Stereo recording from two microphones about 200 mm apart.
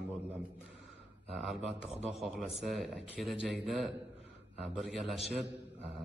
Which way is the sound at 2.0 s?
Centre (ahead or behind).